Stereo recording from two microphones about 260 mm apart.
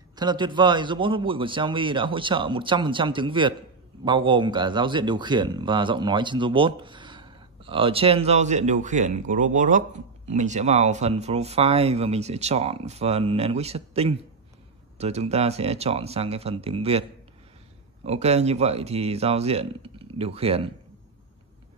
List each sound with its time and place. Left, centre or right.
0.1 s speech: centre
18.0 s speech: right